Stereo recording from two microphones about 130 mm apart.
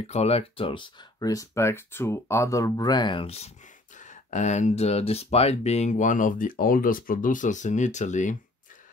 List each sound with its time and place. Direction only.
0.0 s speech: 55° left (ahead or behind)